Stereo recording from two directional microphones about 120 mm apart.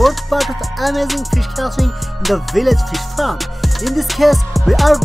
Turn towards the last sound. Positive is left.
turn(degrees=0)  # may be behind; listen again after turning